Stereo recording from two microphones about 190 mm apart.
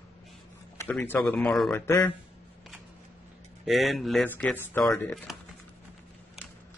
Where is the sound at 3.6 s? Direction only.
Centre (ahead or behind).